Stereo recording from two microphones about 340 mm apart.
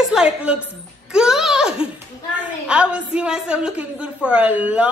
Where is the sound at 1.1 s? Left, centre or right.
Centre.